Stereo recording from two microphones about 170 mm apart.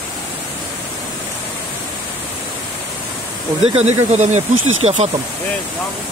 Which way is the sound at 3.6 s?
40° right (ahead or behind).